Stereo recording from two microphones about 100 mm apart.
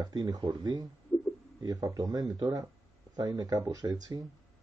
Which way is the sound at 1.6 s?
40° right (ahead or behind).